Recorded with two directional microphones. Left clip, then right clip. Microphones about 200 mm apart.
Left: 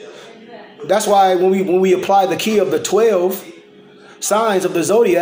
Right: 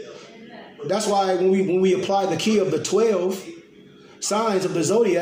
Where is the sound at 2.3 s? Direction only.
45° left (ahead or behind).